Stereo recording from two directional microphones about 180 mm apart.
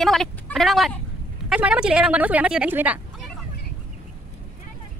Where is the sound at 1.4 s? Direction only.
5° right (ahead or behind).